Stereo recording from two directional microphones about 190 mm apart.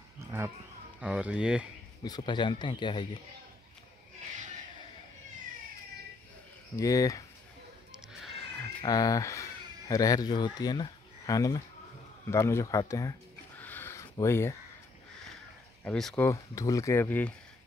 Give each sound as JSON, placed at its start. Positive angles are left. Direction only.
{"t": 1.0, "sound": "speech", "side_deg": -5}
{"t": 2.0, "sound": "speech", "side_deg": 25}
{"t": 6.8, "sound": "speech", "side_deg": 15}
{"t": 7.9, "sound": "music", "side_deg": 0}
{"t": 8.8, "sound": "speech", "side_deg": 20}
{"t": 13.6, "sound": "a sound", "side_deg": 10}
{"t": 15.8, "sound": "speech", "side_deg": 5}
{"t": 16.3, "sound": "speech", "side_deg": 15}